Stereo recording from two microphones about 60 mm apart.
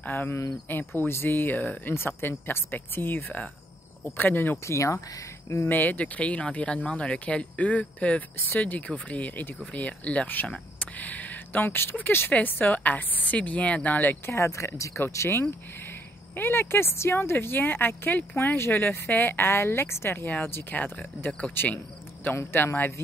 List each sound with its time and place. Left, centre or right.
0.0 s speech: left
4.6 s speech: left
5.7 s speech: left
10.5 s a sound: left
12.3 s speech: left
14.2 s speech: left
15.9 s speech: left